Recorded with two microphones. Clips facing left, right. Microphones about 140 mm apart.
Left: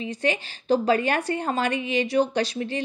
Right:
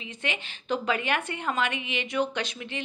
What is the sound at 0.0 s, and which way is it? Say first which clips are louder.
A woman's voice: left 9 dB; 35° left (ahead or behind).